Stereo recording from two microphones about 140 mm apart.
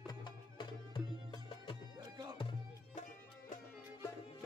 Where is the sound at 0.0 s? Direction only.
30° left (ahead or behind).